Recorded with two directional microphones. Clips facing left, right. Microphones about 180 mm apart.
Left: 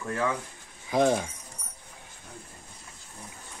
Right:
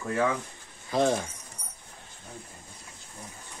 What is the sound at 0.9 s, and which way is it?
Speech, 15° left (ahead or behind).